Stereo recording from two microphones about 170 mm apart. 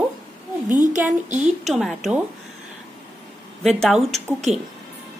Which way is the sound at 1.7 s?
Centre (ahead or behind).